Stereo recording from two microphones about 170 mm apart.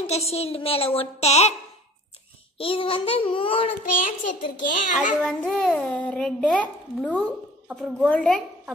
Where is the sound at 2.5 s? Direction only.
30° left (ahead or behind).